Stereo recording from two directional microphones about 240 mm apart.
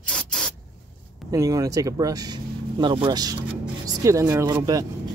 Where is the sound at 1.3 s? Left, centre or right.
Centre.